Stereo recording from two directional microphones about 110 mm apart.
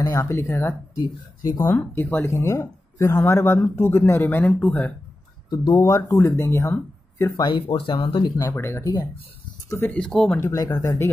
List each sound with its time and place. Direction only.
0.0 s speech: 30° left (ahead or behind)
0.9 s speech: 35° left (ahead or behind)
1.7 s speech: 20° left (ahead or behind)
5.5 s speech: 35° left (ahead or behind)
7.4 s speech: 55° left (ahead or behind)
8.4 s speech: 25° left (ahead or behind)
9.8 s speech: 10° left (ahead or behind)
10.4 s speech: 30° left (ahead or behind)